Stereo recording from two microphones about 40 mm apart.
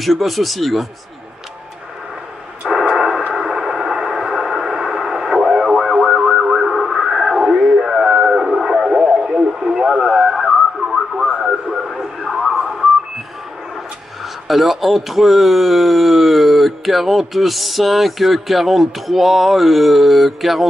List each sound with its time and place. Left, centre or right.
0.0 s speech: centre
2.7 s radio: centre
3.3 s a sound: centre
7.8 s radio: centre
9.2 s radio: right
9.5 s radio: centre
12.5 s radio: centre
14.5 s speech: centre